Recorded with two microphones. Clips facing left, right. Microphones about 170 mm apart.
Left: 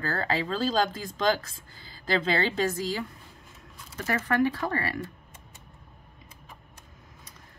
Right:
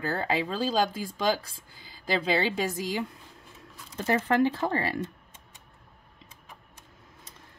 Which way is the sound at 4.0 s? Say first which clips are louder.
Right 2 dB; 25° right (ahead or behind).